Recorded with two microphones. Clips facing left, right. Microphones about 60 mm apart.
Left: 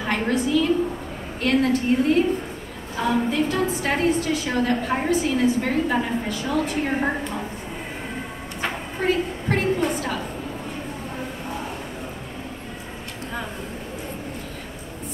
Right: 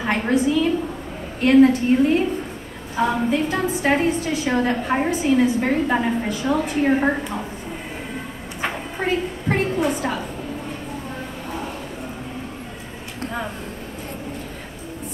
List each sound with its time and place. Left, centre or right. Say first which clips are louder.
0.0 s a woman's voice: right 3 dB; centre
3.0 s a woman's voice: right 2 dB; centre
8.6 s a sound: even; centre